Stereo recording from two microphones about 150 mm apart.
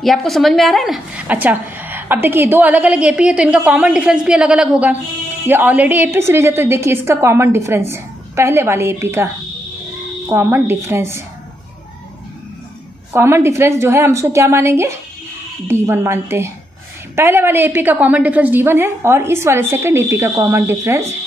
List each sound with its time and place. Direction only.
0.0 s a woman's voice: centre (ahead or behind); by 11.2 s 15° right (ahead or behind)
13.1 s a woman's voice: 15° right (ahead or behind)